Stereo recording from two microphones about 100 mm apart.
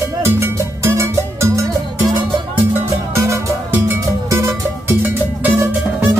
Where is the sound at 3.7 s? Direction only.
20° right (ahead or behind).